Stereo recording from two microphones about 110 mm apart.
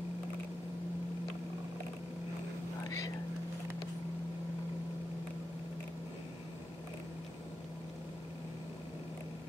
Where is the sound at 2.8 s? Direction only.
30° left (ahead or behind).